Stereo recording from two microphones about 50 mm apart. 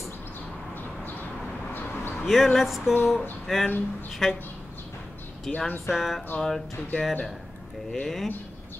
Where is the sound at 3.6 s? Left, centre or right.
Left.